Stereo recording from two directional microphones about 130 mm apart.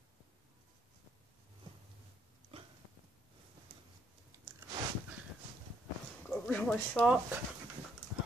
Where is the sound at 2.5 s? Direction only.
45° right (ahead or behind).